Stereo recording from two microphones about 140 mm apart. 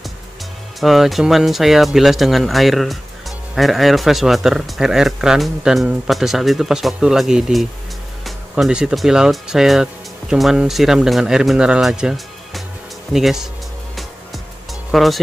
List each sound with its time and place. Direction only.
0.7 s speech: centre (ahead or behind)
13.9 s music: centre (ahead or behind)